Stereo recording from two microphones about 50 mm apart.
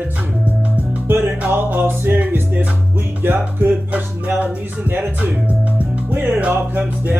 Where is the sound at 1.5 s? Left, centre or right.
Right.